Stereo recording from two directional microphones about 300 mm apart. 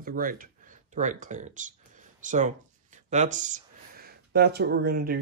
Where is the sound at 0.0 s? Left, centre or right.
Right.